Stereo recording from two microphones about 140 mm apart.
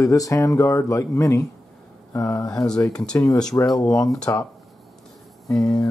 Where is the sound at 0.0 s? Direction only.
25° left (ahead or behind).